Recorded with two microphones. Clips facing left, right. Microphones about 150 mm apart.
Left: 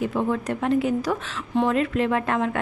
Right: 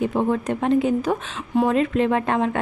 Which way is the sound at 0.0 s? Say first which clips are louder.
Right 3 dB; 25° right (ahead or behind).